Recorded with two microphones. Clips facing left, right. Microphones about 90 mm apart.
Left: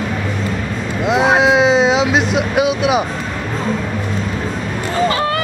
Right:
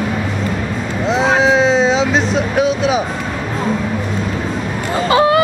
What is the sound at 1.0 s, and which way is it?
Speech, 10° left (ahead or behind).